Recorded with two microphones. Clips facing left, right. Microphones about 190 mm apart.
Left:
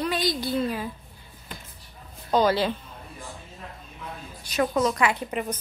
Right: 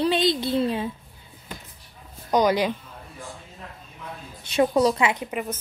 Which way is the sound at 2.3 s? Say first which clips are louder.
Right 1 dB; 15° right (ahead or behind).